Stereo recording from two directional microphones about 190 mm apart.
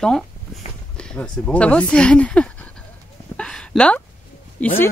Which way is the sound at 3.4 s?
5° left (ahead or behind).